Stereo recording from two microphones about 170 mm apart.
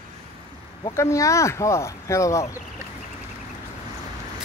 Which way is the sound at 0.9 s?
15° left (ahead or behind).